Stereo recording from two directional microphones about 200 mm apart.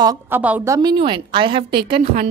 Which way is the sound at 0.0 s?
15° right (ahead or behind).